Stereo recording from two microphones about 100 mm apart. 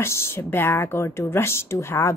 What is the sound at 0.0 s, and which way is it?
Speech, 20° left (ahead or behind).